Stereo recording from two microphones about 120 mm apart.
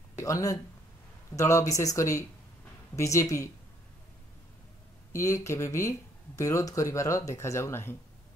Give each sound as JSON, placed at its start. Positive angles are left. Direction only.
{"t": 0.2, "sound": "speech", "side_deg": 30}
{"t": 5.1, "sound": "speech", "side_deg": 25}